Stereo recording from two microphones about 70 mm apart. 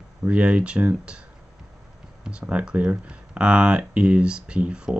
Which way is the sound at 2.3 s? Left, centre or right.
Centre.